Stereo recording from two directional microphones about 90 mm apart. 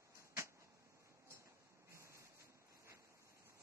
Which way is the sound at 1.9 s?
35° right (ahead or behind).